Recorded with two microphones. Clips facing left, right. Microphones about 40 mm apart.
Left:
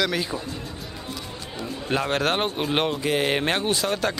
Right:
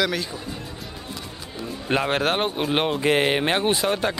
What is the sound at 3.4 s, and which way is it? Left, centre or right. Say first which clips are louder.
Speech: right 2 dB; centre.